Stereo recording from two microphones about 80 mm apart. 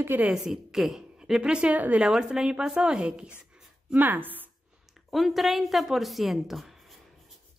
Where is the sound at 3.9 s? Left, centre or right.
Right.